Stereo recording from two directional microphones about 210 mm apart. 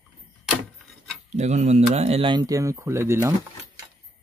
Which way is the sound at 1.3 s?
35° right (ahead or behind).